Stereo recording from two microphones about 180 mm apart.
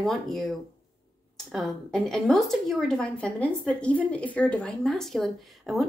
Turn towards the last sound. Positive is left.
turn(degrees=0)  # may be behind; listen again after turning